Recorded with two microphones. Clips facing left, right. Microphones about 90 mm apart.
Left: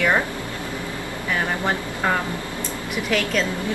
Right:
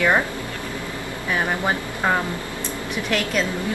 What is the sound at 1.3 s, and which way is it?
Speech, 15° right (ahead or behind).